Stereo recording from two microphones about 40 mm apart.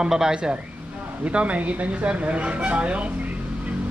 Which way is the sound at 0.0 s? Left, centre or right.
Centre.